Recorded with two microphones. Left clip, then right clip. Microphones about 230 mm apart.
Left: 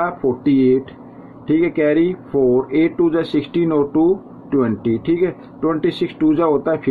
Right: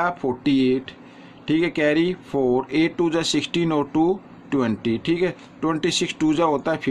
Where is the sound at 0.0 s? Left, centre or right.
Right.